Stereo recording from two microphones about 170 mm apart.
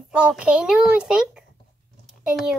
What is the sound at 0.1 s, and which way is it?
A child's voice, 5° right (ahead or behind).